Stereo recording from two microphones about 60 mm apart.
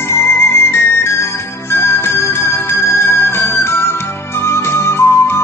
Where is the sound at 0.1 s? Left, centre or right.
Left.